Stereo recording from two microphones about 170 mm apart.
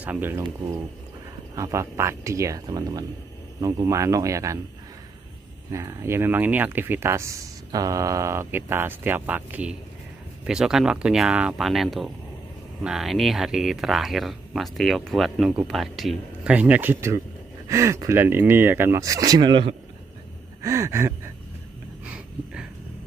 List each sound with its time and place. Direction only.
0.0 s speech: 10° right (ahead or behind)
1.5 s speech: 20° right (ahead or behind)
5.7 s speech: 15° right (ahead or behind)
20.6 s gasp: 15° right (ahead or behind)
22.1 s a sound: 5° right (ahead or behind)